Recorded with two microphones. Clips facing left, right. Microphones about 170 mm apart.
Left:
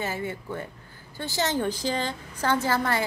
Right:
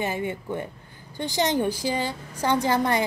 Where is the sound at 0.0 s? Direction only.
20° right (ahead or behind).